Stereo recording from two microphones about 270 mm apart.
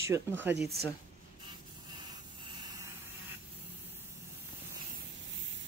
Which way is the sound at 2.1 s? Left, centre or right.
Centre.